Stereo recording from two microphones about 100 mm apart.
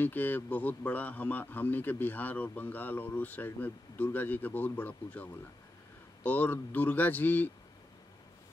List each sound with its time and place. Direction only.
0.0 s a man's voice: 20° left (ahead or behind)